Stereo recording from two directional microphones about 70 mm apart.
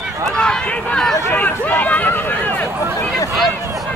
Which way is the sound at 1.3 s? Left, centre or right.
Left.